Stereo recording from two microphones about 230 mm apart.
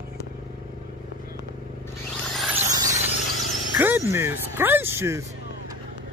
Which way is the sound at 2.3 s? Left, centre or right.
Centre.